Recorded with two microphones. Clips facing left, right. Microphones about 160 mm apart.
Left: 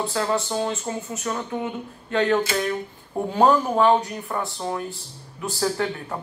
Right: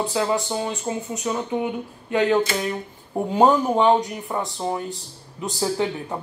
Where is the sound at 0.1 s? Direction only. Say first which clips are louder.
Right 1 dB; 15° right (ahead or behind).